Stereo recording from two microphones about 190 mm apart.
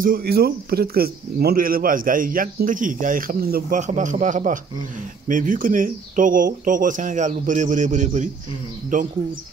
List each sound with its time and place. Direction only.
0.0 s speech: 55° right (ahead or behind)